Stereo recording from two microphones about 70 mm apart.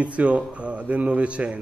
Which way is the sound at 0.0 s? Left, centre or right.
Centre.